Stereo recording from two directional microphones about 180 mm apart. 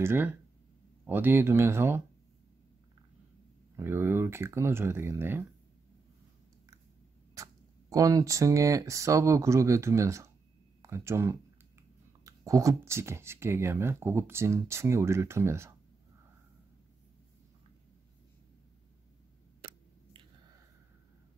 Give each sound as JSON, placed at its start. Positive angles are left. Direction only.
{"t": 0.0, "sound": "speech", "side_deg": -10}
{"t": 3.7, "sound": "speech", "side_deg": -15}
{"t": 7.9, "sound": "speech", "side_deg": -20}